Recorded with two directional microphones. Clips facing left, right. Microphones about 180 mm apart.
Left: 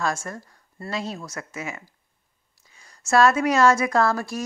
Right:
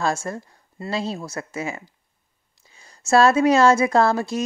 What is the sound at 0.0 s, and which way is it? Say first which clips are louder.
Speech: right 3 dB; 25° right (ahead or behind).